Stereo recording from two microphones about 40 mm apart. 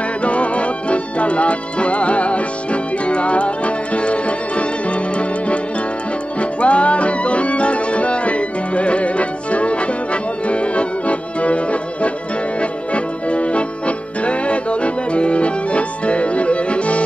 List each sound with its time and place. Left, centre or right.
0.2 s music: left